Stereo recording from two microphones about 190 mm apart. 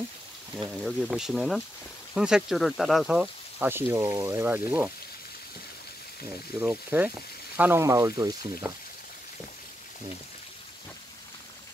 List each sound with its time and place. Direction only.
0.7 s speech: 5° right (ahead or behind)
6.6 s speech: 10° right (ahead or behind)